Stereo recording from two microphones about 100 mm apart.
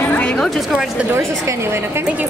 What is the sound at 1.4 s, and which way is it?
Speech, 25° right (ahead or behind).